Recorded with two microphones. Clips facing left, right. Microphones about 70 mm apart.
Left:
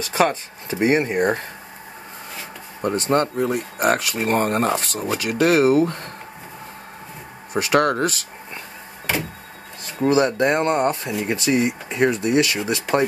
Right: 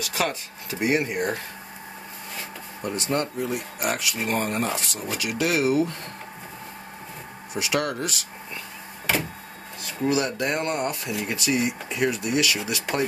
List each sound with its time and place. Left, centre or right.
0.0 s speech: left
2.8 s speech: left
7.5 s speech: left
10.0 s speech: left